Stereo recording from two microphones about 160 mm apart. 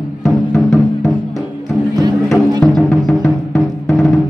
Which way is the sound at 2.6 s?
Centre (ahead or behind).